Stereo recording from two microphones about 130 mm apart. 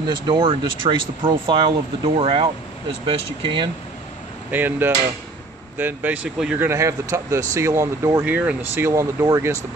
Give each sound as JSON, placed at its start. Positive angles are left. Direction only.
{"t": 0.0, "sound": "speech", "side_deg": -35}
{"t": 4.5, "sound": "speech", "side_deg": -15}
{"t": 6.6, "sound": "speech", "side_deg": -20}
{"t": 8.2, "sound": "speech", "side_deg": -10}